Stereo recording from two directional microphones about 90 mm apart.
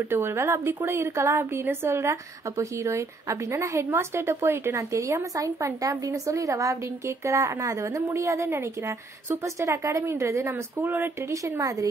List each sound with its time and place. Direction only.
0.1 s a woman's voice: 25° right (ahead or behind)